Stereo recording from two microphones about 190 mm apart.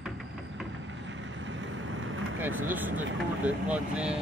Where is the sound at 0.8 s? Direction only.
80° right.